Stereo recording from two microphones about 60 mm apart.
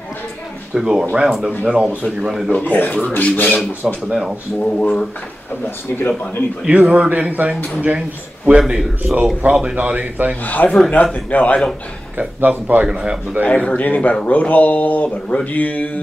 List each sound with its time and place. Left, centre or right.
0.7 s speech: centre
2.6 s speech: left
3.8 s speech: centre
4.6 s speech: left
6.6 s a man's voice: right
8.5 s a man's voice: centre
10.4 s speech: left
12.2 s a man's voice: right
12.8 s speech: centre
13.5 s speech: centre